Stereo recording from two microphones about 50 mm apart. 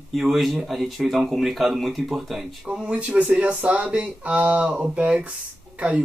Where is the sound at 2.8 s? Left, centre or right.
Right.